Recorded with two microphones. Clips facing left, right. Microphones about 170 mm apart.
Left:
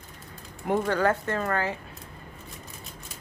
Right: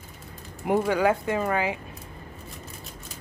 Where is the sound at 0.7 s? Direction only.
10° right (ahead or behind).